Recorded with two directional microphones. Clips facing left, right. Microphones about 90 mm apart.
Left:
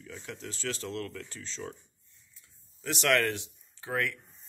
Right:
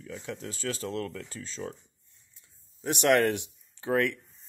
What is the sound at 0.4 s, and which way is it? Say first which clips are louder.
Speech: even; 45° right (ahead or behind).